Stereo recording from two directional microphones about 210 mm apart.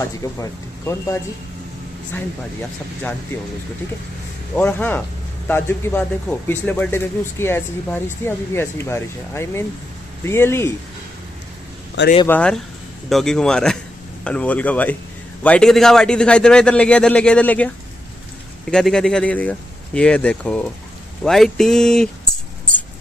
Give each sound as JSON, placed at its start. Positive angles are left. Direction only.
{"t": 0.2, "sound": "speech", "side_deg": 15}
{"t": 4.6, "sound": "speech", "side_deg": 10}
{"t": 12.3, "sound": "a man's voice", "side_deg": 5}
{"t": 18.7, "sound": "a man's voice", "side_deg": 5}